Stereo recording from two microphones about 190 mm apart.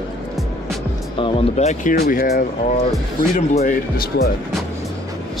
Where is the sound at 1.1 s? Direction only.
30° left (ahead or behind); by 4.3 s 50° left (ahead or behind).